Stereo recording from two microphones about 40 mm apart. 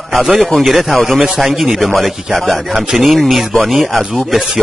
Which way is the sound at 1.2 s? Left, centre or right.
Centre.